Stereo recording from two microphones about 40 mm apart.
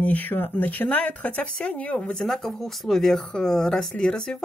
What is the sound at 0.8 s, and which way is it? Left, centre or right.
Speech, left.